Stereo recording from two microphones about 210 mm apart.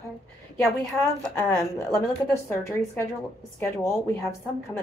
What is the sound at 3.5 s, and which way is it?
Speech, 10° left (ahead or behind).